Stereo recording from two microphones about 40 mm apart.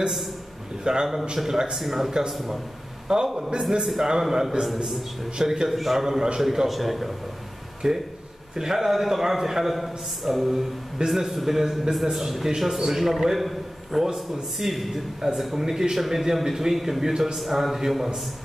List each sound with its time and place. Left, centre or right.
0.8 s a man's voice: centre
3.9 s a man's voice: centre
7.8 s a man's voice: centre